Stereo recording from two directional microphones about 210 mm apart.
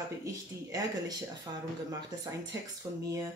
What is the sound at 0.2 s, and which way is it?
Speech, 15° right (ahead or behind).